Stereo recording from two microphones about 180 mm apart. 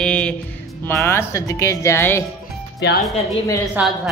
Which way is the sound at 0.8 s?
15° left (ahead or behind).